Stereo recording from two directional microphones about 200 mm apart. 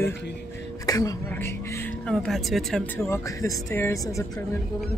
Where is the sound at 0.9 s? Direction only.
15° left (ahead or behind).